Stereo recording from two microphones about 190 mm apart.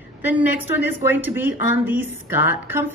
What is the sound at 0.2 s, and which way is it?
A woman's voice, 10° right (ahead or behind).